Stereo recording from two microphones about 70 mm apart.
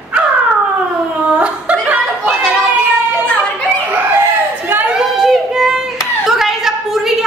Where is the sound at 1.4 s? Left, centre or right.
Centre.